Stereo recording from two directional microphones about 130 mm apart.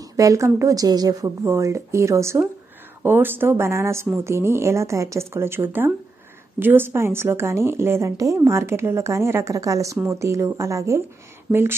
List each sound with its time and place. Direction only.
0.2 s a woman's voice: 25° right (ahead or behind)